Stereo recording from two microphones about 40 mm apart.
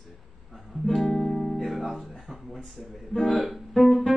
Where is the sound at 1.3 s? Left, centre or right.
Centre.